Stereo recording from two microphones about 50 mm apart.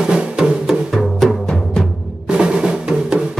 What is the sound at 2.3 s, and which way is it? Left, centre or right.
Drum, centre.